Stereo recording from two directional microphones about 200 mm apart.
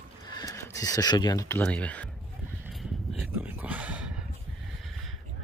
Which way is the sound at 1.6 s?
5° left (ahead or behind).